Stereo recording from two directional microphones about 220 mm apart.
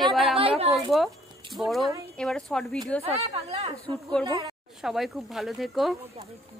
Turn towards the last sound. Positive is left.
turn(degrees=0)  # may be behind; listen again after turning